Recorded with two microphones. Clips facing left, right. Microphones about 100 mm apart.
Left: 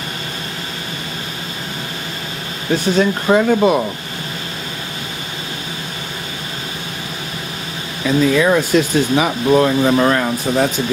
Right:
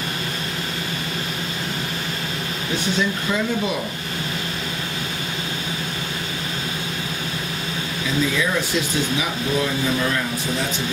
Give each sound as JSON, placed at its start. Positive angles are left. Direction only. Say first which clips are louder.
{"t": 3.0, "sound": "speech", "louder": "left 10 dB", "side_deg": 60}
{"t": 8.0, "sound": "speech", "louder": "left 9 dB", "side_deg": 60}